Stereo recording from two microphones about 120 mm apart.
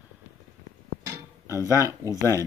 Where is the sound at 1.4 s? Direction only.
25° left (ahead or behind).